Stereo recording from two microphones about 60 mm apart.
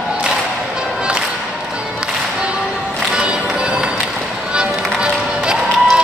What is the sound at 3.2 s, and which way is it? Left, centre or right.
Music, centre.